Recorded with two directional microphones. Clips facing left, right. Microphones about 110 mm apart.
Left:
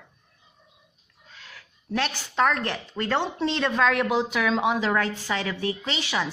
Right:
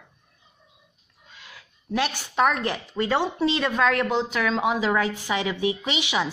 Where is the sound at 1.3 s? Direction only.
15° right (ahead or behind).